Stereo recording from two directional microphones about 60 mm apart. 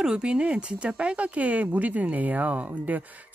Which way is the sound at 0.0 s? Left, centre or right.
Centre.